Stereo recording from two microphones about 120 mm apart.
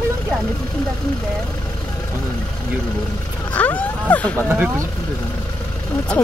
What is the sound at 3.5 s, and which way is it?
Speech, 15° left (ahead or behind).